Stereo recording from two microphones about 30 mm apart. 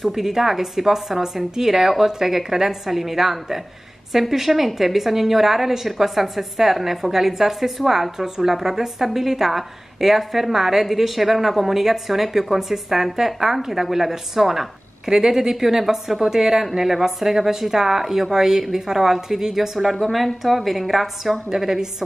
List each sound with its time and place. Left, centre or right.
0.1 s a woman's voice: centre